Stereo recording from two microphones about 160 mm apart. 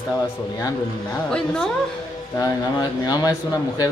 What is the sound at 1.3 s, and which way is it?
Speech, 5° left (ahead or behind).